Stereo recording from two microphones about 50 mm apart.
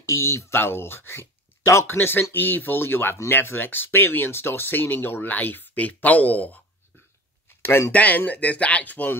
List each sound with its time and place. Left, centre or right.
0.0 s speech: left
1.9 s speech: left
7.9 s speech: left